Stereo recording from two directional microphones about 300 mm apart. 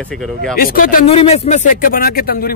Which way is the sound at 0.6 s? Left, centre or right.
Left.